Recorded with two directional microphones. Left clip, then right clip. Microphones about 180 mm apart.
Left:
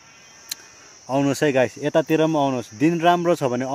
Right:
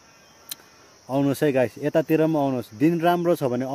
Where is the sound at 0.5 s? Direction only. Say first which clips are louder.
Left 6 dB; centre (ahead or behind).